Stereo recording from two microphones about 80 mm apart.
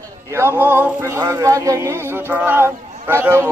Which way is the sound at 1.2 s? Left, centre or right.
Right.